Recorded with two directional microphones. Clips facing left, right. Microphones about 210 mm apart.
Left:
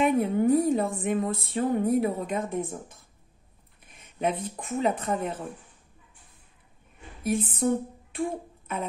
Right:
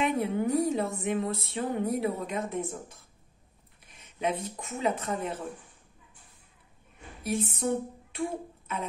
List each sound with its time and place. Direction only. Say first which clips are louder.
0.0 s a woman's voice: left 5 dB; 50° left (ahead or behind)
3.8 s speech: left 3 dB; 50° left (ahead or behind)
7.2 s speech: left 4 dB; 50° left (ahead or behind)